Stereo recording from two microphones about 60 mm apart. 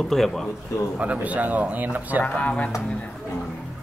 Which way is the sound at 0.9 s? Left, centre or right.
Right.